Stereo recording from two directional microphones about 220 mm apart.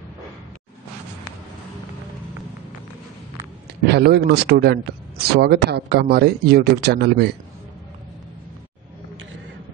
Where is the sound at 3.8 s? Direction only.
50° right (ahead or behind).